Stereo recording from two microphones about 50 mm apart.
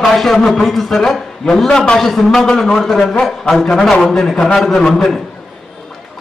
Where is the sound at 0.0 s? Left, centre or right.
Centre.